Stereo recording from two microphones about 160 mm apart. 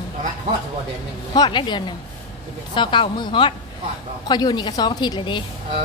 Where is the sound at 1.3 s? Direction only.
25° left (ahead or behind).